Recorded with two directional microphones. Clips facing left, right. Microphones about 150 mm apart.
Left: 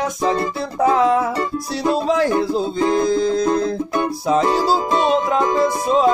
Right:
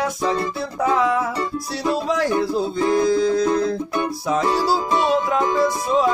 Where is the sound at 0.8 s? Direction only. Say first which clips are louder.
Left 4 dB; 30° left (ahead or behind).